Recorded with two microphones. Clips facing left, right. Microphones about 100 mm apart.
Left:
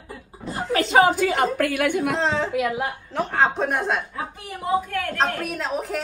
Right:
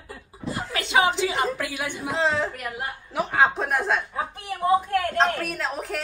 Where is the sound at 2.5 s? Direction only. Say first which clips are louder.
Left 11 dB; 90° left.